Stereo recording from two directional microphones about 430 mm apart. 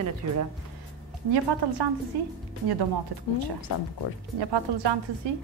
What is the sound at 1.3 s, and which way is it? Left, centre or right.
Speech, right.